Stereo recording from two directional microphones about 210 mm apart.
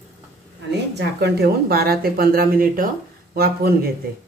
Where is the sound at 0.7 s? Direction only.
50° right (ahead or behind).